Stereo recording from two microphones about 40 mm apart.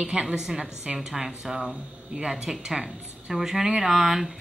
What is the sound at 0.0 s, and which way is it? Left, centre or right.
Speech, right.